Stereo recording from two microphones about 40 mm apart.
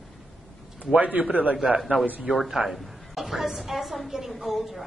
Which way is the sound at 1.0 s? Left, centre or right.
Right.